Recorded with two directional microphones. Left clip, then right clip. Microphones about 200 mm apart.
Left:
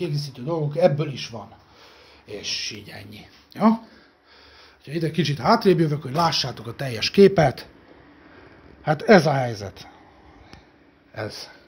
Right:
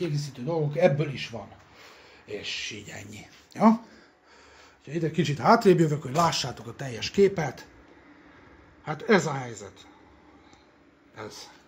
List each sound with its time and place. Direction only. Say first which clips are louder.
0.0 s speech: left 3 dB; 5° left (ahead or behind)
4.8 s speech: left 3 dB; 10° left (ahead or behind)
5.4 s speech: left 1 dB; 5° right (ahead or behind)
6.5 s speech: left 6 dB; 20° left (ahead or behind)
7.2 s speech: left 8 dB; 45° left (ahead or behind)
8.8 s speech: left 8 dB; 45° left (ahead or behind)
11.1 s speech: left 8 dB; 50° left (ahead or behind)